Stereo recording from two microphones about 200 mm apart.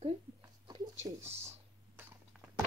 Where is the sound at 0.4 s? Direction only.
20° right (ahead or behind).